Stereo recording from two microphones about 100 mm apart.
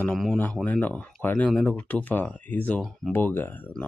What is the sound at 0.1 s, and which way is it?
Speech, 5° left (ahead or behind).